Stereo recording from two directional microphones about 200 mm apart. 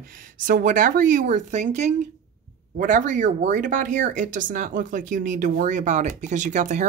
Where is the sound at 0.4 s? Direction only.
45° right (ahead or behind).